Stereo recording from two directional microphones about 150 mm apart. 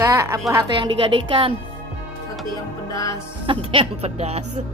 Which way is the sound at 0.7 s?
35° right (ahead or behind).